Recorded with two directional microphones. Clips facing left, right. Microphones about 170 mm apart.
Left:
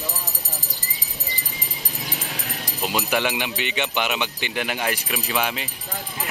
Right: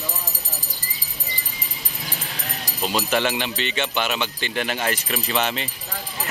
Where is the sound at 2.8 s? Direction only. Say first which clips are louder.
Right 1 dB; 10° left (ahead or behind).